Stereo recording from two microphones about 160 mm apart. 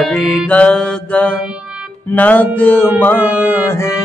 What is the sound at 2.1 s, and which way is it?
A man's voice, 10° left (ahead or behind).